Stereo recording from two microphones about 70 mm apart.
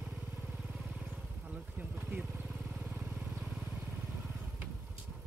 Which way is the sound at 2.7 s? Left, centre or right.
Centre.